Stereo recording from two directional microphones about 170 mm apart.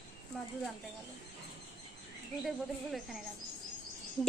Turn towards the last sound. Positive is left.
turn(degrees=0)  # may be behind; listen again after turning